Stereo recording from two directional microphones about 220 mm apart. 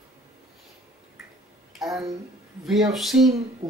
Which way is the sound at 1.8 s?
Centre (ahead or behind).